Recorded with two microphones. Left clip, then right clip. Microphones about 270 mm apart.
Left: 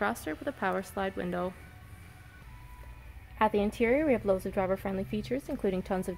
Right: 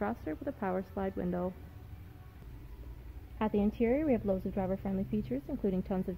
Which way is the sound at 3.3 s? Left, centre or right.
Centre.